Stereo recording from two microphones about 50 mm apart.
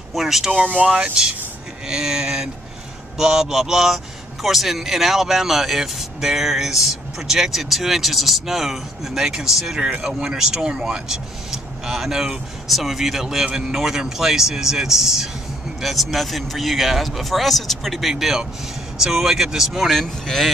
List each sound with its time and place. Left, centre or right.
0.1 s speech: centre
0.5 s speech: right
1.2 s speech: centre
18.2 s speech: centre